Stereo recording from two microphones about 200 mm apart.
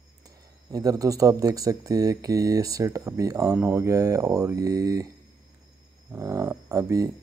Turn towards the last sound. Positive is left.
turn(degrees=-15)  # may be behind; listen again after turning